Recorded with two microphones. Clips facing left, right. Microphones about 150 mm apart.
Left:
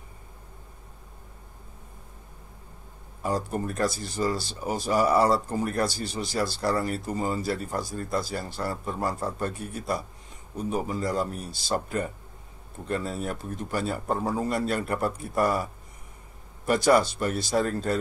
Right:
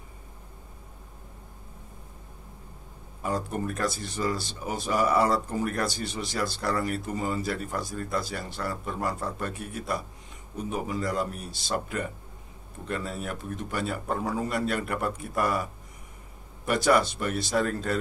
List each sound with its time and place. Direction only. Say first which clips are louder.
3.2 s speech: left 2 dB; 35° left (ahead or behind)
16.6 s speech: left 2 dB; 35° left (ahead or behind)